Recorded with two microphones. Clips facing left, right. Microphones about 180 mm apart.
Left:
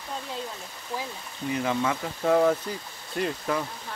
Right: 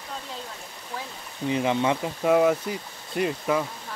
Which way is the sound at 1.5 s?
20° right (ahead or behind).